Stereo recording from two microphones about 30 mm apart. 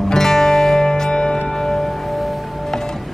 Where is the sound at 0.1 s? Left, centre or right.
Centre.